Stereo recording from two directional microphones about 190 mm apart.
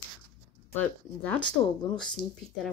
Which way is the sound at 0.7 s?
10° left (ahead or behind).